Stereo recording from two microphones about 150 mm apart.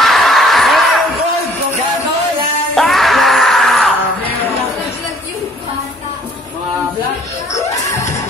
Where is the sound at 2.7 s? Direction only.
Centre (ahead or behind).